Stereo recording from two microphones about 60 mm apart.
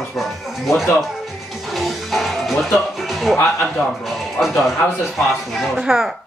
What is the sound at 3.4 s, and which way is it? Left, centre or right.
Speech, left.